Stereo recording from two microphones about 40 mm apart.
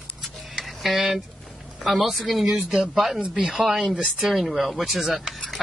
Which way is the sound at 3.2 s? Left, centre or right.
Right.